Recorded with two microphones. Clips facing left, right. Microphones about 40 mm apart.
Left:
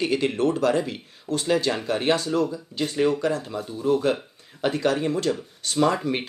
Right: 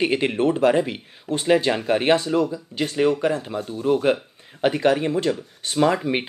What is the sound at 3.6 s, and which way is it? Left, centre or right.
Speech, right.